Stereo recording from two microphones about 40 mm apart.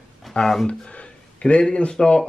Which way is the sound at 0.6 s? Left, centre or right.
Left.